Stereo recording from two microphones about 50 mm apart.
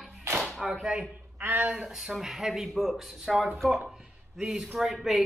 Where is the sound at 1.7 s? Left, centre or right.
Centre.